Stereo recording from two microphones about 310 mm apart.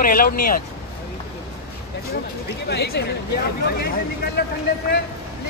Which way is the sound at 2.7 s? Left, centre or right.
Left.